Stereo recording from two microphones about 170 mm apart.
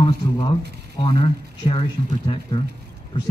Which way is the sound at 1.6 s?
30° left (ahead or behind).